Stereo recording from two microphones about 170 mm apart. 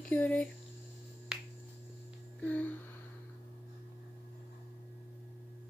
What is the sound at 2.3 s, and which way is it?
Music, 10° left (ahead or behind).